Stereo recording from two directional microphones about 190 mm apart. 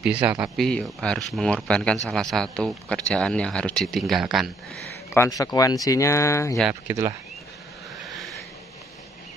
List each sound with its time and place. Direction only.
0.0 s speech: 5° right (ahead or behind)
5.1 s speech: 15° left (ahead or behind)
6.7 s speech: 15° right (ahead or behind)
8.1 s a sound: centre (ahead or behind)